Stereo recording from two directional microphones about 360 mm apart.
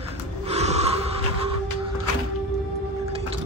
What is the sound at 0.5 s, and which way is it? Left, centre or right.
Gasp, centre.